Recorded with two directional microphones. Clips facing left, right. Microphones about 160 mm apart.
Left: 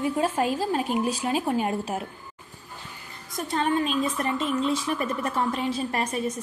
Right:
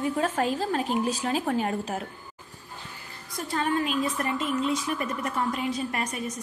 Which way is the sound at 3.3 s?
20° left (ahead or behind).